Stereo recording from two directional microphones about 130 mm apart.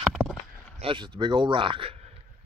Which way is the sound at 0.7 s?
40° right (ahead or behind).